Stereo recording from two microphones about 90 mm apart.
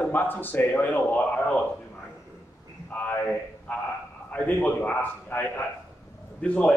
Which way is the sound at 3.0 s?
15° left (ahead or behind).